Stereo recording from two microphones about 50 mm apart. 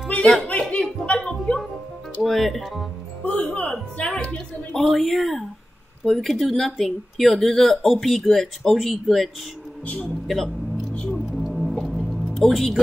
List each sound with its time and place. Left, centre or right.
0.5 s a sound: left
2.2 s speech: centre
3.3 s speech: centre
4.1 s a woman's voice: left
4.7 s speech: centre
11.1 s music: centre
12.5 s speech: centre